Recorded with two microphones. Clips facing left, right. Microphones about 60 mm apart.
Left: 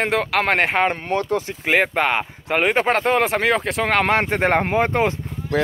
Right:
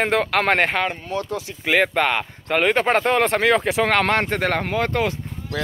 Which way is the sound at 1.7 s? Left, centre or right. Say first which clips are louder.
Even; centre.